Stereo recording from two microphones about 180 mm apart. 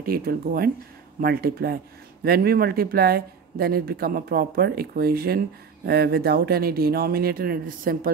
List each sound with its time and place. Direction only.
0.0 s speech: 55° right (ahead or behind)